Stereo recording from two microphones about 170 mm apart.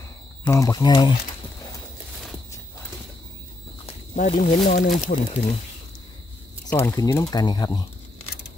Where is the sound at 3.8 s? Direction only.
45° left (ahead or behind).